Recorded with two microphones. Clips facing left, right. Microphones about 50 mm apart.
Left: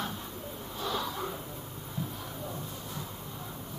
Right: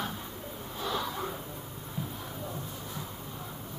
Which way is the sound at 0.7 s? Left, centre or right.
Centre.